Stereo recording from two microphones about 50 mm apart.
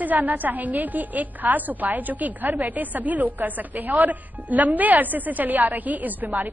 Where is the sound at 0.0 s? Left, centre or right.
Right.